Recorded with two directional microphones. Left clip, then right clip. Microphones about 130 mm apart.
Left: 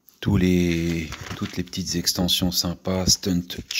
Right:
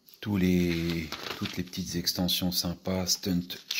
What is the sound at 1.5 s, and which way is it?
Speech, 40° left (ahead or behind).